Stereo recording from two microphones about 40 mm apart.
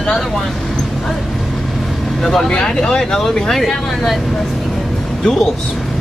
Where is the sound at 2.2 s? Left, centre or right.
Centre.